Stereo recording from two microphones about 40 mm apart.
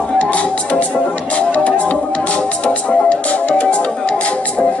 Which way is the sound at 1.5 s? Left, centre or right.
Left.